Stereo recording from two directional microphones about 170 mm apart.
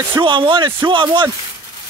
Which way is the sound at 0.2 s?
30° right (ahead or behind).